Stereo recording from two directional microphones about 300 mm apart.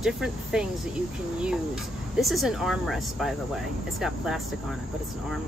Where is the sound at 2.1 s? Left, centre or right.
Centre.